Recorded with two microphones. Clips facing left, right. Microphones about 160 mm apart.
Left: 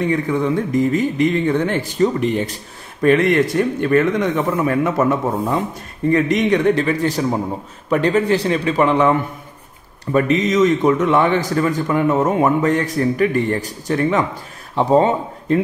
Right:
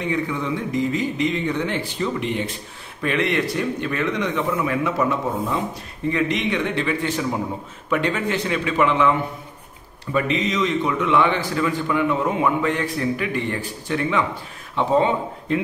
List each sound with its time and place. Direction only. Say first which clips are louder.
0.1 s a man's voice: left 6 dB; 45° left (ahead or behind)